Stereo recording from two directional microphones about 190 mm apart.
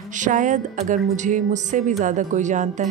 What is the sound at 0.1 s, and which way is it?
Speech, 40° right (ahead or behind).